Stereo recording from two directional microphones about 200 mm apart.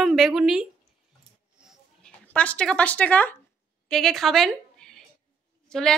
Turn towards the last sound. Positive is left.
turn(degrees=5)  # may be behind; listen again after turning